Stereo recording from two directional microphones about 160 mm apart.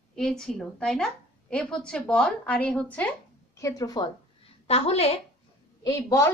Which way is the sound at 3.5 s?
20° left (ahead or behind).